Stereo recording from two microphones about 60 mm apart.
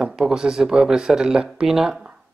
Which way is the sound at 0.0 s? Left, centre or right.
Centre.